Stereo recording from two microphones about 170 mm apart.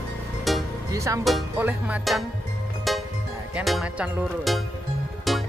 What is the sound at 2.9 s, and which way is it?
Music, centre (ahead or behind).